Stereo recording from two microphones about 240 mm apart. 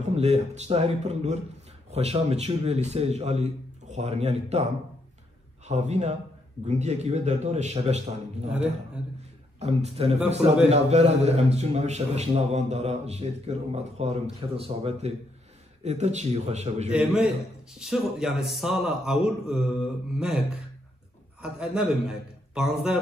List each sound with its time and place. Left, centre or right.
0.1 s a man's voice: right
5.7 s a man's voice: right
9.6 s a man's voice: right
16.9 s a man's voice: centre